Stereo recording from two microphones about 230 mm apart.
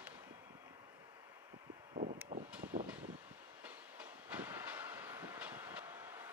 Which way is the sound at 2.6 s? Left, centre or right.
Right.